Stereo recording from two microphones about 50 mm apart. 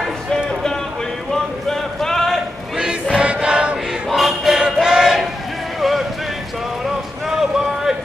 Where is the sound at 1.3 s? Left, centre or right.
Centre.